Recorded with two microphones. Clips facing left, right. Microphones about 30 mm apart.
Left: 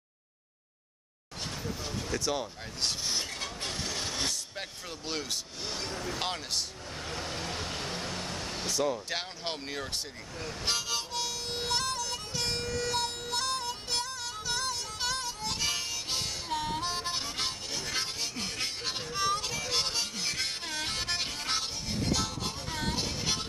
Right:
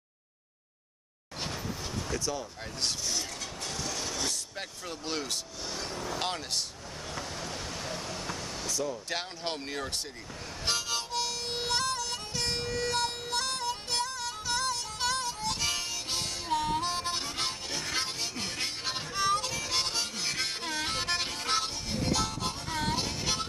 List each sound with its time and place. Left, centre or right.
2.1 s speech: left
3.0 s vehicle: left
4.3 s speech: centre
5.7 s speech: left
6.1 s speech: centre
7.1 s vehicle: left
8.6 s speech: left
9.1 s speech: centre
10.6 s harmonica: centre
12.6 s music: centre